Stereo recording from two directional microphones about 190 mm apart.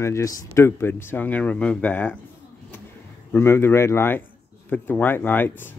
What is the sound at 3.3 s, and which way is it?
Speech, 10° left (ahead or behind).